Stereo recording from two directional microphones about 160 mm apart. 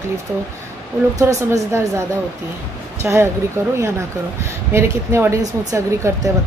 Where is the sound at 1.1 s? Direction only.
20° right (ahead or behind).